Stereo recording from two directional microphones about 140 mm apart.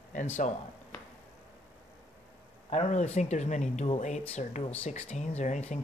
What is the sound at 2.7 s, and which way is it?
Speech, 50° left (ahead or behind).